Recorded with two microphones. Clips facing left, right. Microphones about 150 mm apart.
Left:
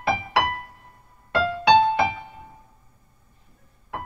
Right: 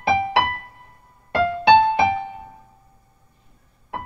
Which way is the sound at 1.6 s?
60° right (ahead or behind).